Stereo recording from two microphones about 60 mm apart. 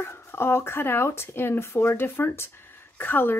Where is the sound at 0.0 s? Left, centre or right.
Left.